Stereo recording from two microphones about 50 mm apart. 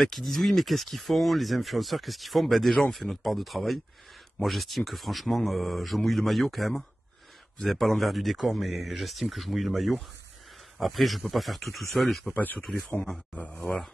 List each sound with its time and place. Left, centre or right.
0.0 s speech: centre
13.3 s speech: left
13.6 s speech: centre